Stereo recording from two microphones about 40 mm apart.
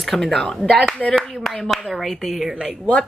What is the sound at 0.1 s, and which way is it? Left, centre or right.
Speech, centre.